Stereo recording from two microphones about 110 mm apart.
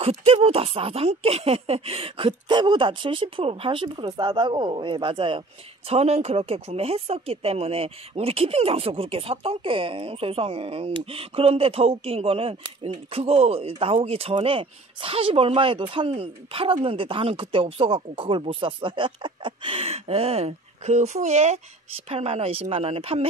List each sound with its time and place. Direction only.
0.2 s speech: 60° right (ahead or behind)
5.9 s speech: 70° right (ahead or behind); by 21.5 s 90° right
22.1 s speech: 65° right (ahead or behind)